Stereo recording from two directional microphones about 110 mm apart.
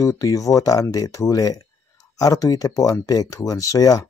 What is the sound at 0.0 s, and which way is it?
Speech, 30° left (ahead or behind).